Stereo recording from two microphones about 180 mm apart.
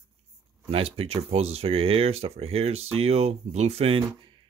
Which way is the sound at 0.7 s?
30° right (ahead or behind).